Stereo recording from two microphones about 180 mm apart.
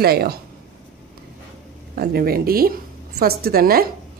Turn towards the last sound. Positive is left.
turn(degrees=-55)  # may be behind; listen again after turning